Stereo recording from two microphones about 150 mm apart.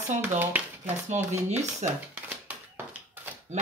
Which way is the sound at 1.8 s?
50° right (ahead or behind).